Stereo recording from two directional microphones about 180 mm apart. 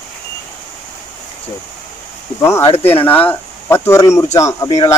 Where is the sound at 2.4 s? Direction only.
15° left (ahead or behind).